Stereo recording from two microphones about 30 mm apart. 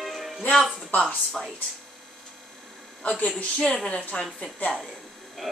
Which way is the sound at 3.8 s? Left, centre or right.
Left.